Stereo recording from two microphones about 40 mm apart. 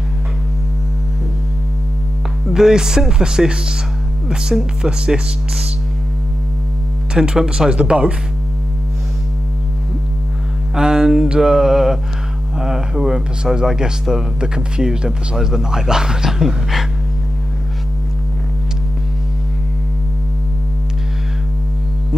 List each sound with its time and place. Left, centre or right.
2.5 s speech: centre
4.8 s speech: centre
7.2 s speech: centre
10.7 s a sound: centre
11.3 s speech: centre